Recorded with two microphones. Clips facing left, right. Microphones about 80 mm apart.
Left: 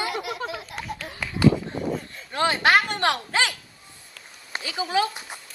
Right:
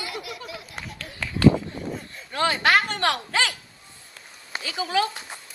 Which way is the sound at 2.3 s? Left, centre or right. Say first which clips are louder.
Left 1 dB; left.